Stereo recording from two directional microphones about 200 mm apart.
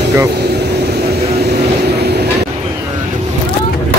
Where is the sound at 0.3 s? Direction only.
55° right (ahead or behind).